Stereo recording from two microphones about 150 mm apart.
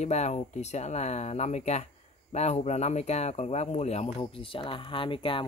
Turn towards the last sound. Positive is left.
turn(degrees=35)  # may be behind; listen again after turning